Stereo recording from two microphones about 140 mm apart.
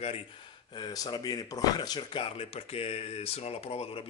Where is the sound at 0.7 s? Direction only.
30° left (ahead or behind).